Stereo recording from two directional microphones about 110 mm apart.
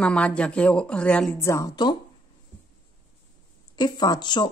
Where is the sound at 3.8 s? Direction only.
40° left (ahead or behind).